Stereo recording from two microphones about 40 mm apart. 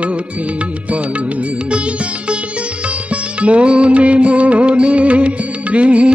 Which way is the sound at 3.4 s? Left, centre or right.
Right.